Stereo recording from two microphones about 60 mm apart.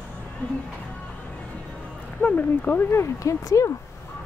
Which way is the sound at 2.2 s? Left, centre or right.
Left.